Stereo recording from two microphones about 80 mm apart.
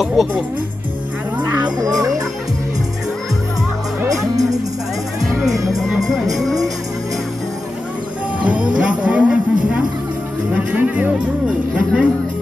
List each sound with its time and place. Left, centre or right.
0.0 s speech: centre
1.6 s music: right
4.1 s music: right
5.8 s speech: centre
8.4 s music: centre
10.5 s speech: centre